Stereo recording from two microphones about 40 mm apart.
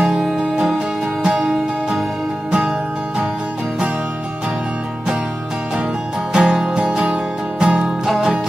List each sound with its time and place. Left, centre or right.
0.0 s music: centre
6.3 s music: centre